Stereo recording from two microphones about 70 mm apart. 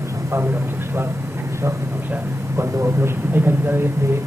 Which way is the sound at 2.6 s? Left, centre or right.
Right.